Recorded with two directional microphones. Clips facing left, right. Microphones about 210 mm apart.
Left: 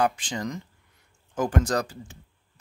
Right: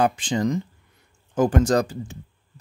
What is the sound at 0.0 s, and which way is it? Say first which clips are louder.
Speech: right 5 dB; 25° right (ahead or behind).